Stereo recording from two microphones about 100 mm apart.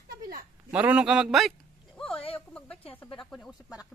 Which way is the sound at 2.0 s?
70° left (ahead or behind).